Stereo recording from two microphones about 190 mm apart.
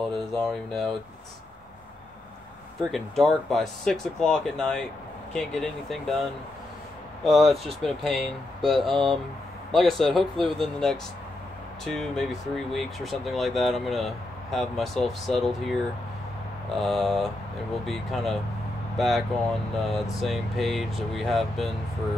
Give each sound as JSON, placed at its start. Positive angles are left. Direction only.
{"t": 0.1, "sound": "speech", "side_deg": 0}
{"t": 2.9, "sound": "speech", "side_deg": 0}
{"t": 7.2, "sound": "speech", "side_deg": 0}
{"t": 8.7, "sound": "speech", "side_deg": -25}
{"t": 9.7, "sound": "speech", "side_deg": 0}
{"t": 16.8, "sound": "speech", "side_deg": 0}